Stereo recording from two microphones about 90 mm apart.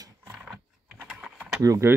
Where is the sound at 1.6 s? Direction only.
35° right (ahead or behind).